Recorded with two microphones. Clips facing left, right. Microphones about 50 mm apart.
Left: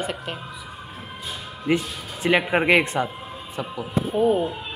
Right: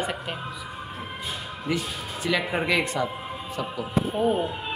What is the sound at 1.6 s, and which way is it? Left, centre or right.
A woman's voice, left.